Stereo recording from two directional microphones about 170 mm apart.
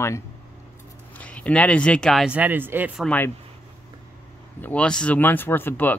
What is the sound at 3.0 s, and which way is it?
Speech, 10° left (ahead or behind).